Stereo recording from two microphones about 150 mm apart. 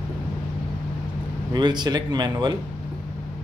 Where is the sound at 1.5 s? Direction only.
30° right (ahead or behind).